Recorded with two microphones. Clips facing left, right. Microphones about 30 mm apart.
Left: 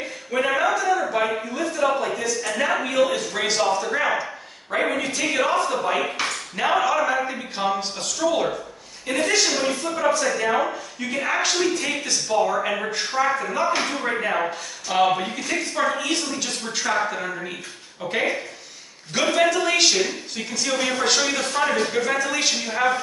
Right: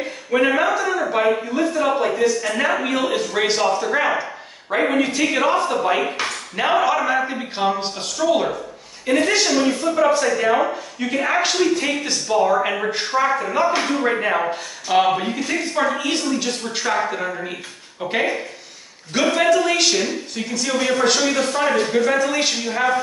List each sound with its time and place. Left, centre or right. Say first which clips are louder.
0.3 s a man's voice: right 4 dB; centre
1.6 s a man's voice: right 1 dB; right; by 22.9 s centre